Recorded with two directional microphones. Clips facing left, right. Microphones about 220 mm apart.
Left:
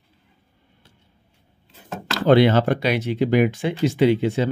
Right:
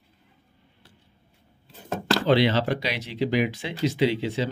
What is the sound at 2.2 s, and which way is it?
Speech, 50° left (ahead or behind).